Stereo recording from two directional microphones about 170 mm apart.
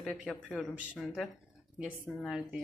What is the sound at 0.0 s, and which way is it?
Speech, centre (ahead or behind).